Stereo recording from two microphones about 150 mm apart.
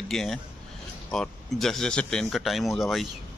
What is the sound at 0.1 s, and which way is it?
Speech, 5° left (ahead or behind).